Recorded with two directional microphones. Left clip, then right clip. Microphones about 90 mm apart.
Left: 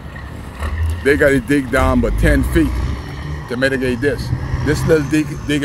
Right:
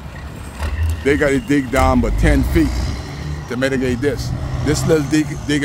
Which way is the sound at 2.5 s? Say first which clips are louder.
Left 1 dB; 30° right (ahead or behind).